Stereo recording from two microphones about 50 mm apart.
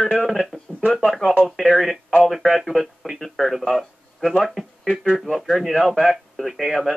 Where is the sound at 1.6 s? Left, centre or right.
Centre.